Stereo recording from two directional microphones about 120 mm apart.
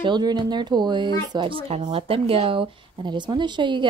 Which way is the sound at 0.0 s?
35° right (ahead or behind).